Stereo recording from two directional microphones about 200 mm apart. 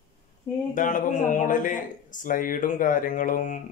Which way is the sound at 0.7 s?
40° left (ahead or behind).